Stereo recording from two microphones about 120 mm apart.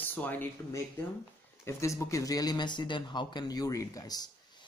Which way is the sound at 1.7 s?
25° left (ahead or behind).